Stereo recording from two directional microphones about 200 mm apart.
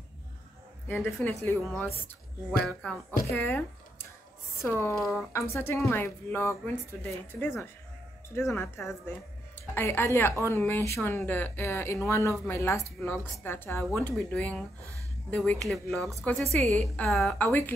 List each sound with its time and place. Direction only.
0.8 s speech: 10° left (ahead or behind)
4.9 s a woman's voice: centre (ahead or behind)
5.3 s a woman's voice: 15° left (ahead or behind)
16.3 s a woman's voice: centre (ahead or behind)